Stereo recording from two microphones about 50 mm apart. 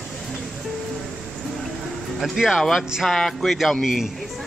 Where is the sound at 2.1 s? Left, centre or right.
Centre.